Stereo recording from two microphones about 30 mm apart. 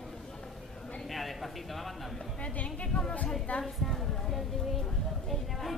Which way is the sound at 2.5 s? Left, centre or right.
Left.